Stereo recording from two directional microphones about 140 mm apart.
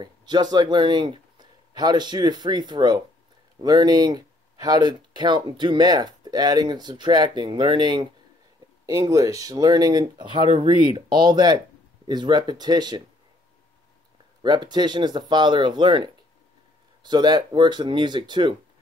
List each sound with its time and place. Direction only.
0.0 s speech: 30° right (ahead or behind)
14.4 s speech: 30° right (ahead or behind)
17.0 s speech: 30° right (ahead or behind)